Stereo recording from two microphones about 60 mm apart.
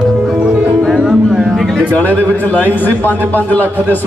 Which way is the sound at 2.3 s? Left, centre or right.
Left.